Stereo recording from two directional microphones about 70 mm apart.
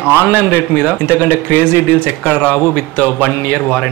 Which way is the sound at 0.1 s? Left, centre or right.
Left.